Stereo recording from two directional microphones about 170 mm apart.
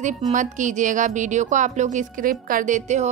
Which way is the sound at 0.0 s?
45° right (ahead or behind).